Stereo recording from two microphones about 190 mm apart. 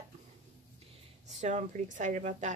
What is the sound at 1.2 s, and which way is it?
Speech, 35° right (ahead or behind).